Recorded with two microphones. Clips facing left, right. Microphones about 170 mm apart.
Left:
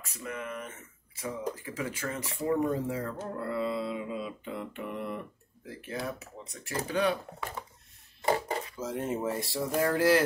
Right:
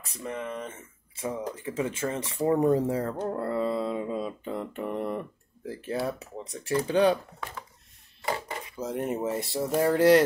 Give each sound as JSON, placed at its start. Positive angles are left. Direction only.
{"t": 0.0, "sound": "speech", "side_deg": -30}
{"t": 8.6, "sound": "speech", "side_deg": -15}